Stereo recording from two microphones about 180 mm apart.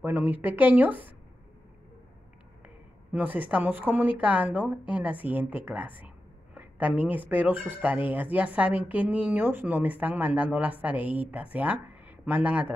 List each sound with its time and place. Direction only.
0.0 s speech: 10° right (ahead or behind)
2.6 s a woman's voice: 10° right (ahead or behind)